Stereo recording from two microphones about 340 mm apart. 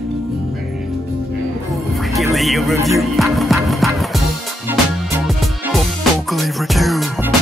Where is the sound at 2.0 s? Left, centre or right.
Centre.